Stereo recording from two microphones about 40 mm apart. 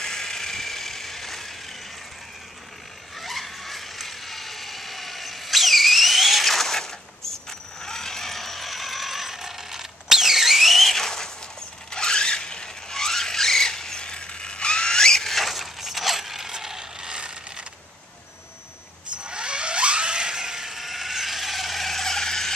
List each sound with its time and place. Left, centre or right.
0.0 s a sound: centre
3.2 s ratchet: centre
11.9 s squeal: centre
15.3 s mechanisms: centre
17.1 s ratchet: right
19.1 s a sound: right; by 22.5 s centre